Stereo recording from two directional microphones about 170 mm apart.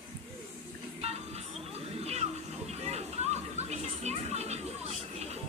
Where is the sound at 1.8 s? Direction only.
40° right (ahead or behind).